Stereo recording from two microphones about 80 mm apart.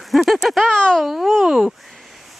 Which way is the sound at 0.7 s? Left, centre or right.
Centre.